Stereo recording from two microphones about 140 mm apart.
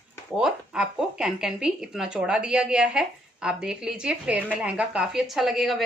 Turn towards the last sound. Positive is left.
turn(degrees=0)  # may be behind; listen again after turning